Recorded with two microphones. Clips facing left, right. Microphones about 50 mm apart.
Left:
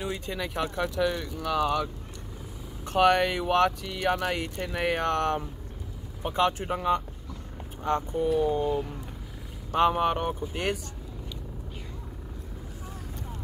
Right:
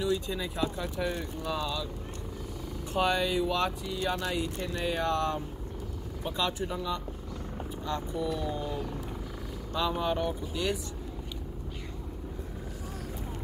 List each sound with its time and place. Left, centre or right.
0.0 s speech: left
0.4 s speech: left
2.9 s speech: left
6.2 s speech: left
9.7 s speech: left